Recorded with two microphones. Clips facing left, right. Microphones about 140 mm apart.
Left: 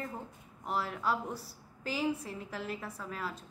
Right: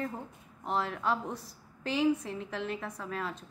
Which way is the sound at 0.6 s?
5° left (ahead or behind).